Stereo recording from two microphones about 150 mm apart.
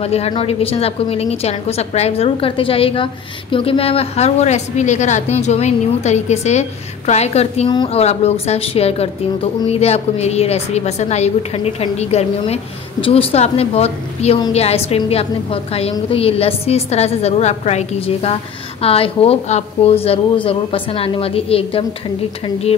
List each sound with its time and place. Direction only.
0.0 s a woman's voice: 45° left (ahead or behind)
7.6 s a woman's voice: 30° left (ahead or behind)
7.9 s a woman's voice: 45° left (ahead or behind)